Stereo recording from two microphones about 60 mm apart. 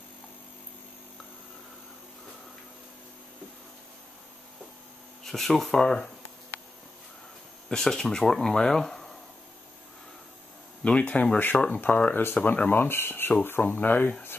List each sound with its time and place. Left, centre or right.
5.2 s speech: centre
7.6 s speech: centre
10.8 s speech: left